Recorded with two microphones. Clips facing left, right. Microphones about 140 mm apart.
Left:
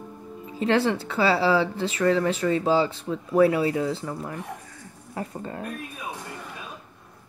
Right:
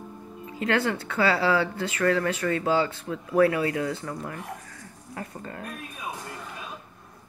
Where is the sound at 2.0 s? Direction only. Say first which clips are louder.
Left 2 dB; 20° left (ahead or behind).